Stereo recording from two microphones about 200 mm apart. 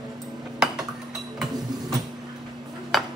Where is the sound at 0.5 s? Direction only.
Centre (ahead or behind).